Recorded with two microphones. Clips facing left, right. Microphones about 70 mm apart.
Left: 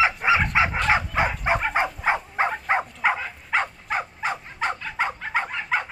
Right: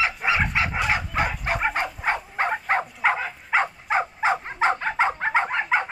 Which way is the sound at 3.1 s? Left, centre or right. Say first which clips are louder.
Right 2 dB; centre.